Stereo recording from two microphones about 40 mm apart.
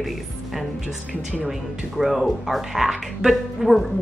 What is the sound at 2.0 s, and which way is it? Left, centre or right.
A woman's voice, centre.